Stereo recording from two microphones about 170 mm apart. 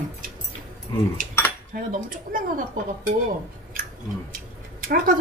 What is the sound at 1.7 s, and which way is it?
Speech, 55° right (ahead or behind).